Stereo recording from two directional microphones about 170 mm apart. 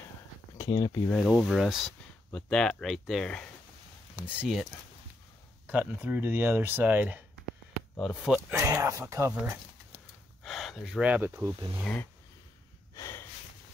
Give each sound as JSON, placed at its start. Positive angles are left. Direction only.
{"t": 0.6, "sound": "speech", "side_deg": 30}
{"t": 1.0, "sound": "speech", "side_deg": 5}
{"t": 5.7, "sound": "speech", "side_deg": -10}
{"t": 8.5, "sound": "speech", "side_deg": -20}
{"t": 10.4, "sound": "speech", "side_deg": 0}
{"t": 11.8, "sound": "dog", "side_deg": 10}
{"t": 12.9, "sound": "snort", "side_deg": 15}